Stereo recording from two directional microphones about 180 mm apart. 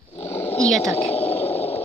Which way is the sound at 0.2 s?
10° left (ahead or behind).